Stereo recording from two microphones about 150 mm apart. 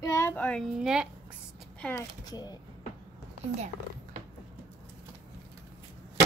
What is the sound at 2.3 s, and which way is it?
Speech, 25° left (ahead or behind).